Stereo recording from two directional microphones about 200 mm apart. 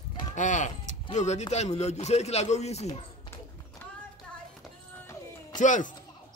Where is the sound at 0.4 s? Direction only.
40° left (ahead or behind).